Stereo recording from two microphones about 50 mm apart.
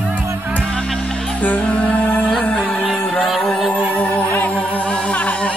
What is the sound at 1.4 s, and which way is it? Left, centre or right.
Music, left.